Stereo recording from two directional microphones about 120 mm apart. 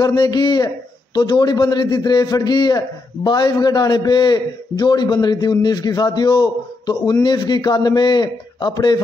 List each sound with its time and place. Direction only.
0.0 s a man's voice: 35° left (ahead or behind)